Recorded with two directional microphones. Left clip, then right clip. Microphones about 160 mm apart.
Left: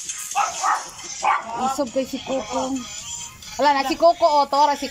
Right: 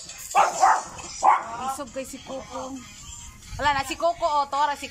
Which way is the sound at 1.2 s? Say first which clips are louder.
Right 2 dB; 40° right (ahead or behind).